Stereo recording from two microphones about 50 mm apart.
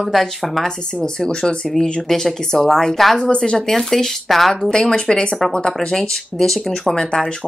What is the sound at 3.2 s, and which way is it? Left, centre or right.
Speech, centre.